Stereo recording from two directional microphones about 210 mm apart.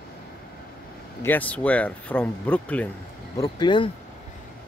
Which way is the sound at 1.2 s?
5° left (ahead or behind).